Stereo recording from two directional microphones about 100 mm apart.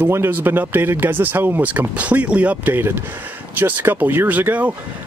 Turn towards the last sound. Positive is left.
turn(degrees=-15)  # may be behind; listen again after turning